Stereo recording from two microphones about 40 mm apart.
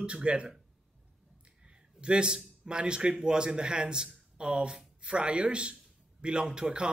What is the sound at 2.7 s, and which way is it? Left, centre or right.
A man's voice, right.